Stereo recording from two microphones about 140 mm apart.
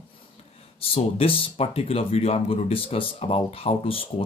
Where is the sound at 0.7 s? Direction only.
40° left (ahead or behind).